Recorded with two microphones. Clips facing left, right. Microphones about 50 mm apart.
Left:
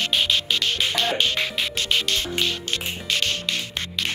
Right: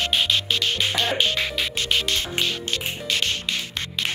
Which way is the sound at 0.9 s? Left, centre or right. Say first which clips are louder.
Even; centre.